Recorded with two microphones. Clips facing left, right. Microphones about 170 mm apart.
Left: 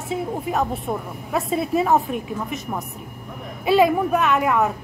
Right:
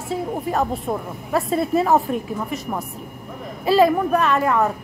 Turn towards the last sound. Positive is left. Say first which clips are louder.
# right 1 dB
turn(degrees=5)  # may be behind; listen again after turning